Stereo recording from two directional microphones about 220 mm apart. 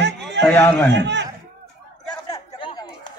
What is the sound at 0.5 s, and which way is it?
Speech, 5° left (ahead or behind).